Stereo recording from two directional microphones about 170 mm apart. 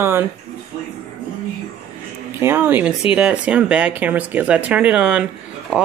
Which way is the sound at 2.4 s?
15° right (ahead or behind).